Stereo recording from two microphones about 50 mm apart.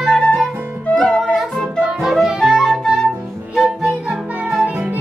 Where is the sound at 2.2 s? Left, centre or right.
Centre.